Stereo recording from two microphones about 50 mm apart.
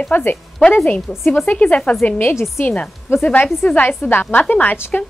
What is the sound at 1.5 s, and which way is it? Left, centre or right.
Speech, left.